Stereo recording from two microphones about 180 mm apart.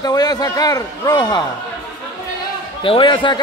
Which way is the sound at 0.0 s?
20° left (ahead or behind).